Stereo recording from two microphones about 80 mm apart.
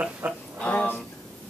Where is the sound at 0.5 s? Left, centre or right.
Centre.